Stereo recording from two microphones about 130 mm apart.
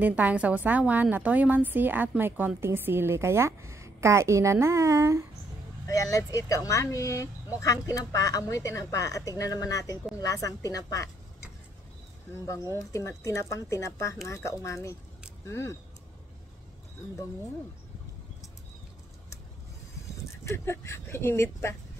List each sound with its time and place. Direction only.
0.0 s a woman's voice: 10° right (ahead or behind)
5.9 s speech: 25° left (ahead or behind)
12.7 s speech: 25° left (ahead or behind)
20.4 s speech: 20° left (ahead or behind)